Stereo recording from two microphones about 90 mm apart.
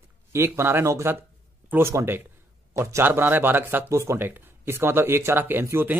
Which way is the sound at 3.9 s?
35° right (ahead or behind).